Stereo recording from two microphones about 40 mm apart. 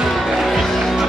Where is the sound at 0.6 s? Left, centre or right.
Centre.